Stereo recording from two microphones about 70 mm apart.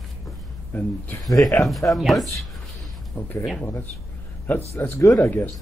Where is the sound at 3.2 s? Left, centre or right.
Left.